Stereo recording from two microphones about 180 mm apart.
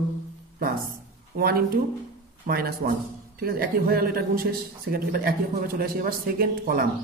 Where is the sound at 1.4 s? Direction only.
60° right (ahead or behind).